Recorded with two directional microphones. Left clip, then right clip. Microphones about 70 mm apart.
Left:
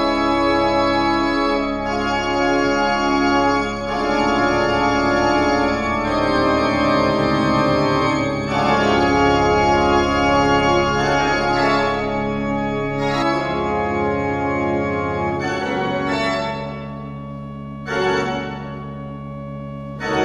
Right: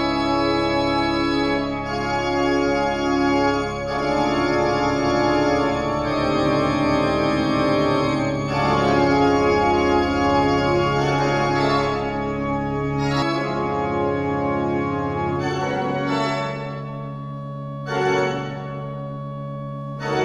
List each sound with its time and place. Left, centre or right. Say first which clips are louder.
0.0 s organ: left 3 dB; centre
2.7 s music: left 3 dB; centre
4.1 s organ: left 3 dB; centre
12.9 s organ: left 3 dB; centre